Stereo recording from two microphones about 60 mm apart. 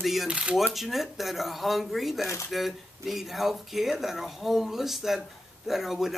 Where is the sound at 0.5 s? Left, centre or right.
Centre.